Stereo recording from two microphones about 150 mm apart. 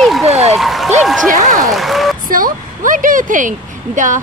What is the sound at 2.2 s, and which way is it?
A woman's voice, 70° right (ahead or behind).